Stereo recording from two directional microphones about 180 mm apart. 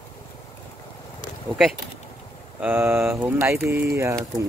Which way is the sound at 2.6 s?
10° right (ahead or behind).